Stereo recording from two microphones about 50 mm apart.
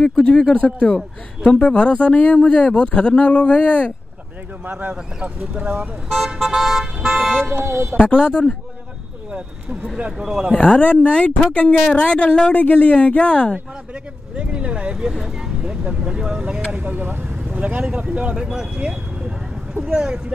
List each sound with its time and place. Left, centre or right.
0.0 s speech: centre
4.7 s speech: right
6.0 s speech: centre
7.6 s speech: right
8.0 s speech: left
10.1 s speech: centre
10.5 s speech: left
14.3 s speech: right
15.0 s speech: centre
15.6 s speech: centre
16.8 s speech: right
17.3 s vehicle: right
17.8 s speech: right